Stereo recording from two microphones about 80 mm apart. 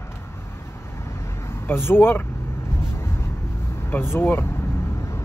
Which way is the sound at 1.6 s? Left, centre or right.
Left.